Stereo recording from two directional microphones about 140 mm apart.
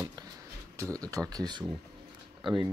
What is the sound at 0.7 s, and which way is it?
Speech, 25° right (ahead or behind).